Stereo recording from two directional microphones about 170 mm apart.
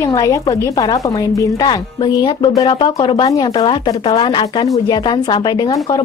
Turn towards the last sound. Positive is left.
turn(degrees=25)  # may be behind; listen again after turning